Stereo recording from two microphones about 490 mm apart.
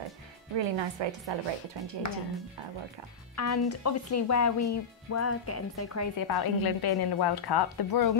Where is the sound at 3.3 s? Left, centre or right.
Left.